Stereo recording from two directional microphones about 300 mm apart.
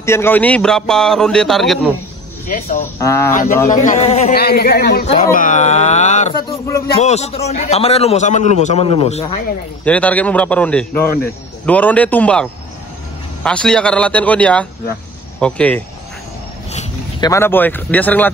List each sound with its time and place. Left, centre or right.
0.0 s speech: centre
2.4 s a man's voice: left
3.0 s speech: centre
3.8 s a man's voice: left
9.8 s speech: centre